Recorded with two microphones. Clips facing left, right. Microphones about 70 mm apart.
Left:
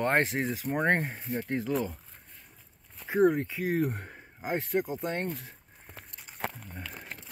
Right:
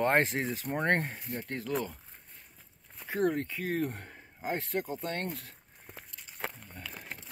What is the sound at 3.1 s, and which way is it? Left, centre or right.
Speech, centre.